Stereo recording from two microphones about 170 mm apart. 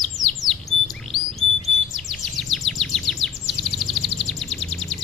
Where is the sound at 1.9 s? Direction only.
Centre (ahead or behind).